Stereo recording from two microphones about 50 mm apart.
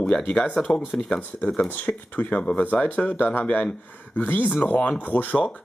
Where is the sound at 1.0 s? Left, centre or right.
Left.